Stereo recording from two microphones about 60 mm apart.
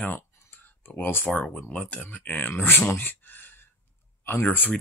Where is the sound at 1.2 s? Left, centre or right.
Centre.